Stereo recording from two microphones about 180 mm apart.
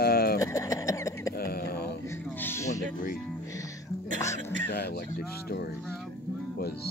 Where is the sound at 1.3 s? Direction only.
60° left (ahead or behind).